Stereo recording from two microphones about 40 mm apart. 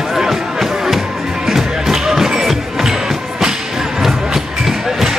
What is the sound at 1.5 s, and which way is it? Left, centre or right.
Thump, centre.